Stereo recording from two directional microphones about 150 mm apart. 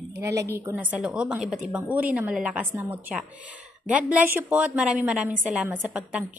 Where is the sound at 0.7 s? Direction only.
10° right (ahead or behind).